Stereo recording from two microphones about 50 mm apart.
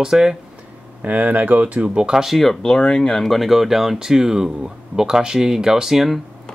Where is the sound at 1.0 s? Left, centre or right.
Right.